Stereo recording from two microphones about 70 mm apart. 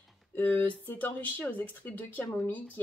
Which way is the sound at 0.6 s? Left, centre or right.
Left.